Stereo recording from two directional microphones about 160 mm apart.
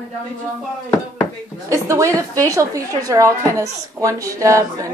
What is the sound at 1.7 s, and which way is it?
A woman's voice, 20° right (ahead or behind).